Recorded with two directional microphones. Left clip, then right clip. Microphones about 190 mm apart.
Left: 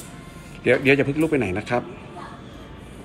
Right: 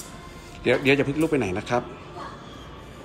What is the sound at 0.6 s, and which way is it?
Speech, 20° right (ahead or behind).